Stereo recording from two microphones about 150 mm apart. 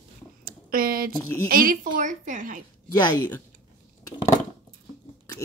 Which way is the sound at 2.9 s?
30° left (ahead or behind).